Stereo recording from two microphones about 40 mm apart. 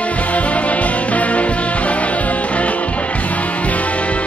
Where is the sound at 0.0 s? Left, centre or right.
Left.